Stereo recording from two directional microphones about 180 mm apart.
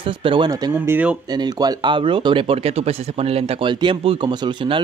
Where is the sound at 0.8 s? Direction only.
10° right (ahead or behind).